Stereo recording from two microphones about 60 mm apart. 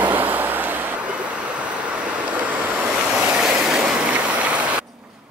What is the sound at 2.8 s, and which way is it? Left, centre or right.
Vehicle, centre.